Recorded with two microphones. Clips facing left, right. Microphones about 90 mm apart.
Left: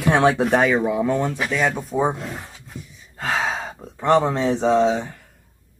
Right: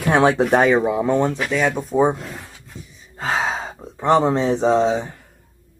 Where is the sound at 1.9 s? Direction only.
10° right (ahead or behind).